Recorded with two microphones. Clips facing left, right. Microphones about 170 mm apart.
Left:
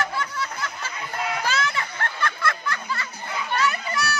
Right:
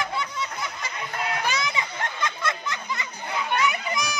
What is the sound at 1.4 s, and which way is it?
Music, 15° right (ahead or behind).